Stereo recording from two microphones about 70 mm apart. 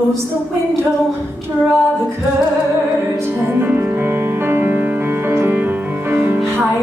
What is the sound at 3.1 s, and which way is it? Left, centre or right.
Music, right.